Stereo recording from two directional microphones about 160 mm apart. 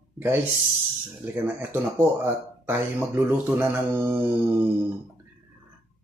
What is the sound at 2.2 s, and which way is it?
Speech, 15° right (ahead or behind).